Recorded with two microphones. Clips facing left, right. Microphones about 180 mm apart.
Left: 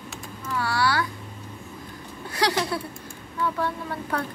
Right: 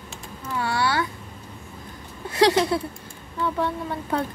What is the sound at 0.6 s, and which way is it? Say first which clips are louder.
Speech: right 1 dB; 20° right (ahead or behind).